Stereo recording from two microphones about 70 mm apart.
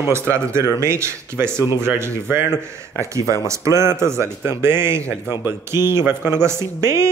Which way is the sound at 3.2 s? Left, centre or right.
Left.